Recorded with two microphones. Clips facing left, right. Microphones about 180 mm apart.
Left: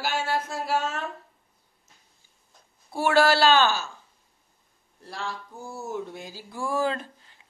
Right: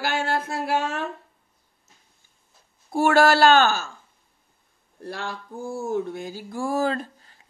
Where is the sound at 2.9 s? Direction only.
50° right (ahead or behind).